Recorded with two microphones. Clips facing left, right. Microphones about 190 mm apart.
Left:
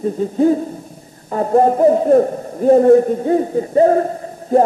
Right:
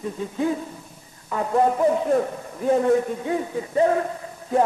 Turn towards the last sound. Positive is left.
turn(degrees=40)  # may be behind; listen again after turning